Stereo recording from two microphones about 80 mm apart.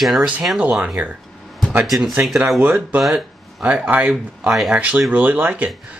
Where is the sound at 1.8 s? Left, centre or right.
Centre.